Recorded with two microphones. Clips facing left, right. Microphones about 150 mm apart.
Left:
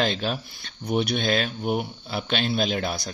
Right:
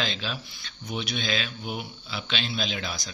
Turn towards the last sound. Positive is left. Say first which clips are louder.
# left 7 dB
turn(degrees=55)  # may be behind; listen again after turning